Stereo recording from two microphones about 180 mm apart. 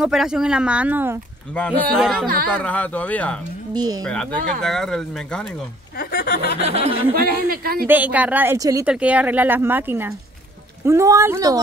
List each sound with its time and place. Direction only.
0.0 s speech: centre (ahead or behind)
1.5 s speech: 5° left (ahead or behind)
3.7 s speech: 20° right (ahead or behind)
4.0 s speech: 5° left (ahead or behind)
5.9 s snicker: 55° left (ahead or behind)
6.6 s speech: 35° right (ahead or behind)
7.2 s speech: 55° right (ahead or behind)
7.8 s speech: 10° right (ahead or behind)
8.8 s speech: 5° right (ahead or behind)